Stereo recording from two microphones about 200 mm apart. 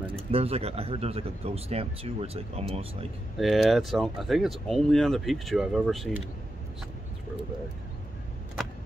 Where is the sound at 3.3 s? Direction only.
Centre (ahead or behind).